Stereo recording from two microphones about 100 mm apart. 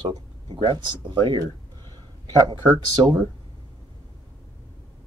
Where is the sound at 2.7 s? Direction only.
45° right (ahead or behind).